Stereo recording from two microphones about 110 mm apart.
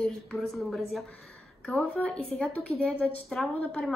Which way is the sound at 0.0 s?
Centre (ahead or behind).